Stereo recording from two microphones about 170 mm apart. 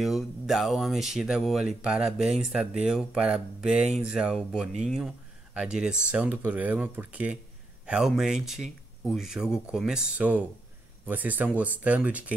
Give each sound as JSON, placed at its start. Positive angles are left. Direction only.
{"t": 0.0, "sound": "speech", "side_deg": 0}